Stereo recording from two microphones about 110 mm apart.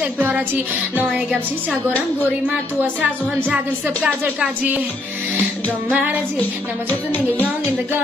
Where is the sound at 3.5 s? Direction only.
15° right (ahead or behind).